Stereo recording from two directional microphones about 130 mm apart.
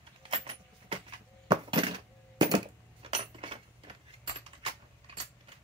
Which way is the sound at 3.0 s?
45° right (ahead or behind).